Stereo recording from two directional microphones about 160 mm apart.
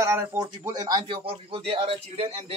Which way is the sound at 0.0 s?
15° right (ahead or behind).